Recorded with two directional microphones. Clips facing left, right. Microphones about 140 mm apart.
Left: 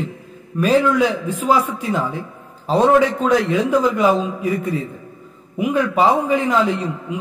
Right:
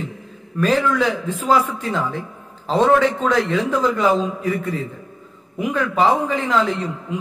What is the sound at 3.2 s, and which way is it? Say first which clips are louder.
Speech: left 2 dB; 15° left (ahead or behind).